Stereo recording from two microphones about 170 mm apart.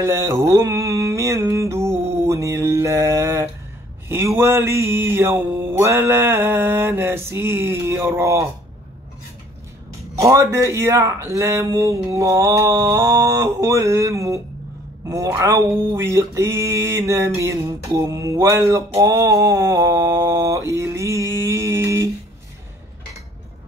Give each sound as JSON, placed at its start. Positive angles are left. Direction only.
{"t": 0.0, "sound": "music", "side_deg": -15}
{"t": 4.1, "sound": "speech", "side_deg": -15}
{"t": 9.9, "sound": "speech", "side_deg": -20}
{"t": 17.9, "sound": "mantra", "side_deg": -15}